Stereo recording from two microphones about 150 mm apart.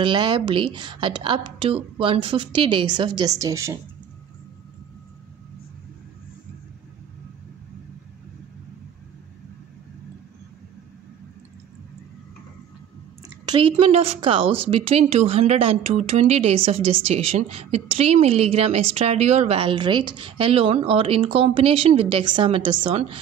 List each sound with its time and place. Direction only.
0.0 s a woman's voice: 30° right (ahead or behind)
13.5 s a woman's voice: 35° right (ahead or behind)